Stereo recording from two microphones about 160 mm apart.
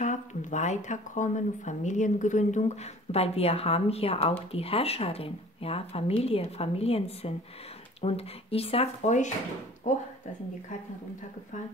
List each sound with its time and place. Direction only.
0.0 s speech: 50° left (ahead or behind)